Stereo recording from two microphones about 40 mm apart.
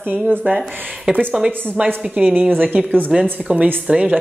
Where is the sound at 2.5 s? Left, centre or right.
Right.